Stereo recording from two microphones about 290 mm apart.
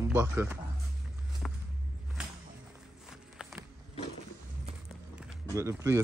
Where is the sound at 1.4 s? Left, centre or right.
Centre.